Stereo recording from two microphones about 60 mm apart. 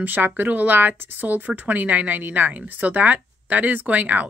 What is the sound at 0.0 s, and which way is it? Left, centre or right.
A woman's voice, right.